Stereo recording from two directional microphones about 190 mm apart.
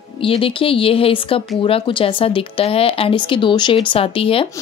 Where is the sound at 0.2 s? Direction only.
30° left (ahead or behind).